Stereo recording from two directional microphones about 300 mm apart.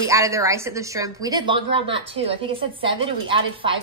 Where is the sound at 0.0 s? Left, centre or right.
Centre.